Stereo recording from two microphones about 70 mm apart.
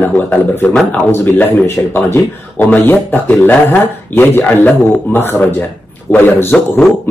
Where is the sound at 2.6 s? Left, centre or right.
Left.